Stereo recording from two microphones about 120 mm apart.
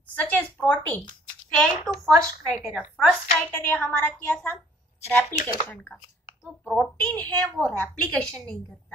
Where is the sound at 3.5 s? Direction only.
15° left (ahead or behind).